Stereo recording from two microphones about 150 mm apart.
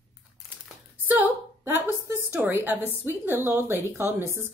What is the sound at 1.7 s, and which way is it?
A woman's voice, 15° right (ahead or behind).